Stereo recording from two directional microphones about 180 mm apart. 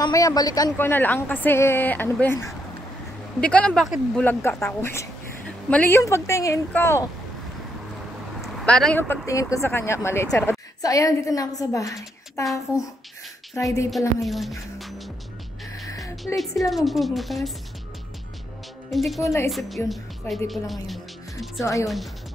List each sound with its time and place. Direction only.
0.0 s a woman's voice: 20° left (ahead or behind)
3.3 s a woman's voice: 5° left (ahead or behind)
8.4 s a woman's voice: centre (ahead or behind); by 12.4 s 15° left (ahead or behind)
13.8 s speech: centre (ahead or behind)
15.9 s music: 20° left (ahead or behind)
16.7 s speech: centre (ahead or behind)
18.9 s speech: centre (ahead or behind)
19.2 s a woman's voice: 15° left (ahead or behind)
19.9 s speech: centre (ahead or behind)